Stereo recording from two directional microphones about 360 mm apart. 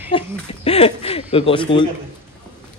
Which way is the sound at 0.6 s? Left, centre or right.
Centre.